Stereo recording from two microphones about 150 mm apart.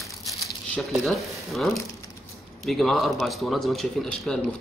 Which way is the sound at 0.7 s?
Centre (ahead or behind).